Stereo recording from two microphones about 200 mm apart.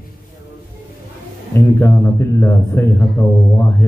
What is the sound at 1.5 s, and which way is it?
A man's voice, 15° left (ahead or behind).